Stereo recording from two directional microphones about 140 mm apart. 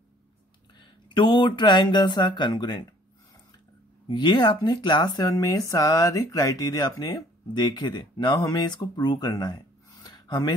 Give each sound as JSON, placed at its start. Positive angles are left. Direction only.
{"t": 0.7, "sound": "speech", "side_deg": 35}
{"t": 4.1, "sound": "speech", "side_deg": 30}
{"t": 10.0, "sound": "a sound", "side_deg": 30}